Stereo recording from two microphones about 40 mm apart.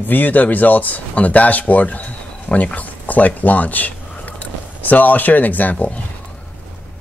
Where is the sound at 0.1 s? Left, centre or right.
Left.